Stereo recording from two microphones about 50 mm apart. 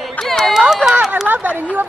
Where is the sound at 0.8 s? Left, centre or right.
Right.